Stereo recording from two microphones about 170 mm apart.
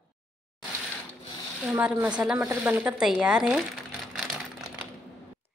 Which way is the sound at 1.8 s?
10° right (ahead or behind).